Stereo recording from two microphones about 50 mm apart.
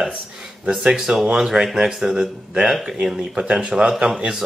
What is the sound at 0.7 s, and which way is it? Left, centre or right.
Speech, centre.